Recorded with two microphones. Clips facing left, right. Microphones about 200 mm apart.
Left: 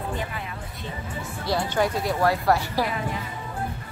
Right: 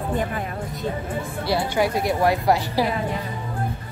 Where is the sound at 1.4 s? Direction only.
10° right (ahead or behind).